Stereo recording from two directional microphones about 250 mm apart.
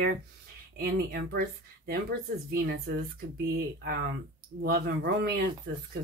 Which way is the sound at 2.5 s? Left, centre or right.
Right.